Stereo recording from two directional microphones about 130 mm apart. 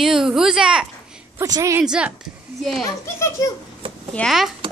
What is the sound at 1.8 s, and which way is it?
Speech, 10° right (ahead or behind).